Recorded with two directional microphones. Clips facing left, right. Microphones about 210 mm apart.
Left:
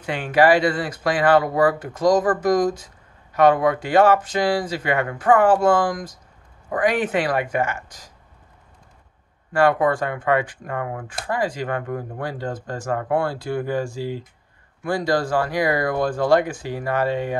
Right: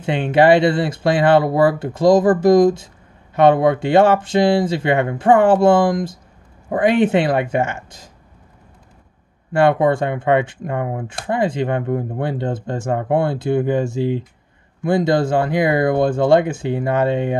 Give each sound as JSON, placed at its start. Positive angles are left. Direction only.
{"t": 0.0, "sound": "speech", "side_deg": -25}
{"t": 9.5, "sound": "speech", "side_deg": -25}